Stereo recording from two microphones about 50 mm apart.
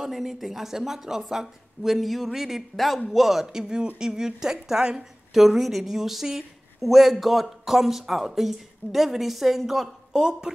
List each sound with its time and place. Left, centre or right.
0.0 s a woman's voice: centre